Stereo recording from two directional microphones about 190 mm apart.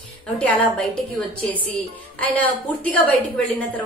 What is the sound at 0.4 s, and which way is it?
Speech, 5° left (ahead or behind).